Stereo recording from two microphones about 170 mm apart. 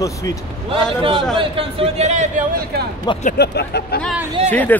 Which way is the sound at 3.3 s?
70° left (ahead or behind).